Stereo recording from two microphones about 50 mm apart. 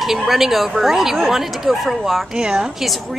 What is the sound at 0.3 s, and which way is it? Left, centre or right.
Speech, centre.